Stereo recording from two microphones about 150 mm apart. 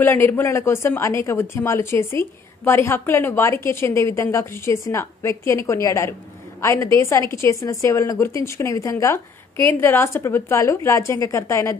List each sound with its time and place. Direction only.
0.0 s a woman's voice: 15° left (ahead or behind)